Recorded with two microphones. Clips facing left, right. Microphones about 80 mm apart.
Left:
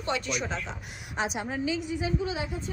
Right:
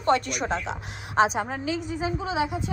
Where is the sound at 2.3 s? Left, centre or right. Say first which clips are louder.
Right 7 dB; right.